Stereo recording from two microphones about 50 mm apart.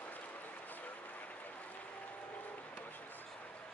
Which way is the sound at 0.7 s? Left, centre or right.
Left.